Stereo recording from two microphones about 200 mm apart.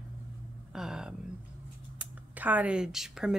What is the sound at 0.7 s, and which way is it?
A woman's voice, 5° right (ahead or behind).